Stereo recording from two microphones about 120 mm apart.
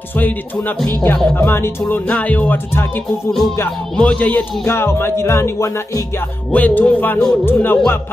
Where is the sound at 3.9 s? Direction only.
10° left (ahead or behind).